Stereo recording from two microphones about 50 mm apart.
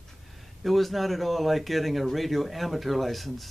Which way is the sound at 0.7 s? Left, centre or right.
Centre.